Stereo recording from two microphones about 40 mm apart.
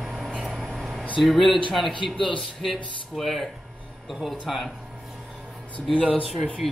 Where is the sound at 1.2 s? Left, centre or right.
Centre.